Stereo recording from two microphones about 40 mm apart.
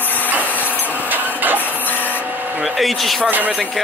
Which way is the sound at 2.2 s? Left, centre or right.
Right.